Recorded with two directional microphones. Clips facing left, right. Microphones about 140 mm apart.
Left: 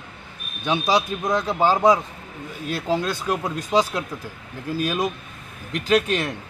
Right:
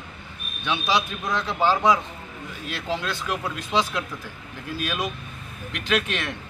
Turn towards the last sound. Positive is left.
turn(degrees=40)  # may be behind; listen again after turning